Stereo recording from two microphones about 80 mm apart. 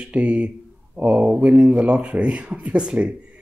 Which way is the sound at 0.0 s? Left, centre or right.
Centre.